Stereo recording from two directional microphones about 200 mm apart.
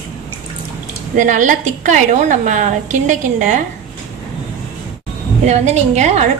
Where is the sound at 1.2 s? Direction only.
40° right (ahead or behind).